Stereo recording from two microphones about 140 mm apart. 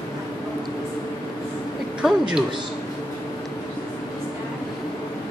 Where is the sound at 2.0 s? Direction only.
5° right (ahead or behind).